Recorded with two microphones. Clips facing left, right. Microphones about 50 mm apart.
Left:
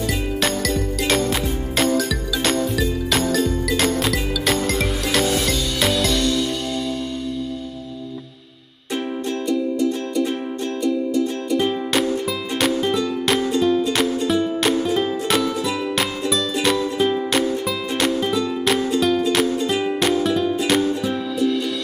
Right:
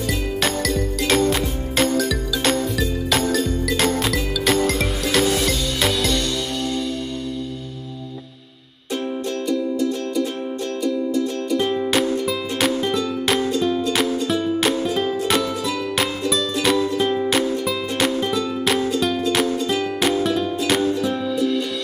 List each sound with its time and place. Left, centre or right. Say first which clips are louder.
0.0 s music: even; centre
10.8 s music: left 1 dB; centre
19.6 s music: left 1 dB; centre
20.0 s music: left 1 dB; centre